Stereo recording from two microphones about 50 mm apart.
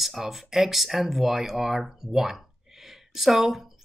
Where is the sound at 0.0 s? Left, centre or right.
Centre.